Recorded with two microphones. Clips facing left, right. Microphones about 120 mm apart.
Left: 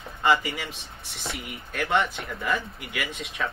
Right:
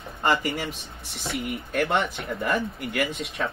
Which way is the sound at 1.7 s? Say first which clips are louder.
Even; 50° right (ahead or behind).